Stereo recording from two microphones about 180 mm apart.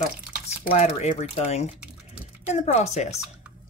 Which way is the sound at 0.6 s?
35° left (ahead or behind).